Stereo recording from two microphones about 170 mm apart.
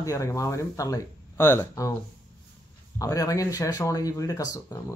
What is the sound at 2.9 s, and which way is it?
Speech, 20° left (ahead or behind).